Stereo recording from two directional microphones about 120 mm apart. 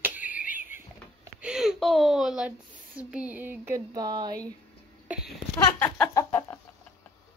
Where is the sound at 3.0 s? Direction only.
10° right (ahead or behind).